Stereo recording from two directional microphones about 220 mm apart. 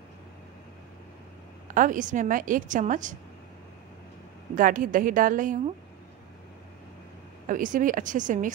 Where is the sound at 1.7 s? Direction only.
35° right (ahead or behind).